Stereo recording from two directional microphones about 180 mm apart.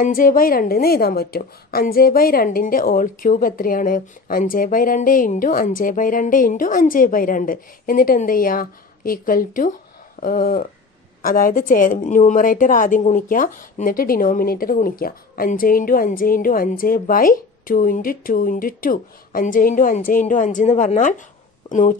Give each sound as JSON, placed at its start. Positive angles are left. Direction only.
{"t": 0.0, "sound": "a woman's voice", "side_deg": 50}